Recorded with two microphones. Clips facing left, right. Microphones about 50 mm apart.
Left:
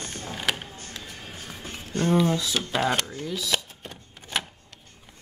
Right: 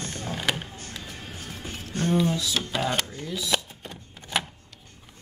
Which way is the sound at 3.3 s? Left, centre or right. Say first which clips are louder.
Right 1 dB; centre.